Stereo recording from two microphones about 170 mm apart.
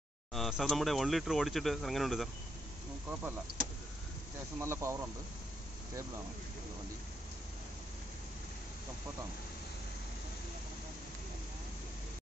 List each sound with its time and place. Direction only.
0.3 s speech: centre (ahead or behind)
4.6 s speech: 15° right (ahead or behind)